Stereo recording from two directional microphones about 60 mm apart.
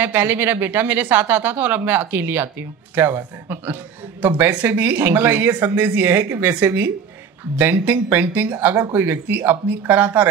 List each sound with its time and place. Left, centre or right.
0.0 s speech: right